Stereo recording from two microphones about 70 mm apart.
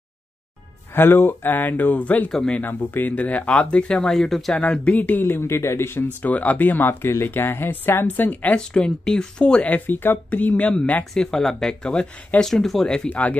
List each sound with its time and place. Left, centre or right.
0.9 s speech: left
2.3 s speech: centre
2.6 s speech: left; by 4.6 s centre
4.6 s speech: centre; by 6.0 s left
6.2 s speech: left
8.5 s speech: centre
11.1 s speech: centre
12.4 s speech: centre; by 13.4 s left